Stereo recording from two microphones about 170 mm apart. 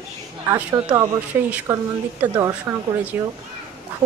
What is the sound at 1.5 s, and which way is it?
A woman's voice, 10° right (ahead or behind).